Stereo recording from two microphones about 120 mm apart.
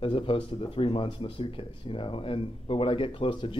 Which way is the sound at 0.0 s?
45° left (ahead or behind).